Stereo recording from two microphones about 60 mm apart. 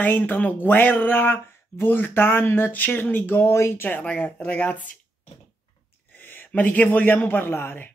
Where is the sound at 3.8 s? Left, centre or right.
Left.